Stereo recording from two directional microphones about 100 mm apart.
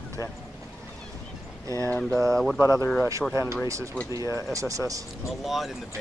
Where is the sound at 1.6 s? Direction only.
30° right (ahead or behind).